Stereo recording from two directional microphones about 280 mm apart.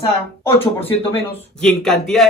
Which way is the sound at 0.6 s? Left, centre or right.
Centre.